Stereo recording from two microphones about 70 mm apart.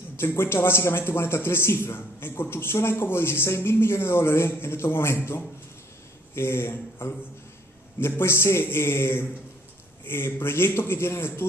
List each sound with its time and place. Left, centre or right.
0.2 s a man's voice: left
8.2 s a man's voice: left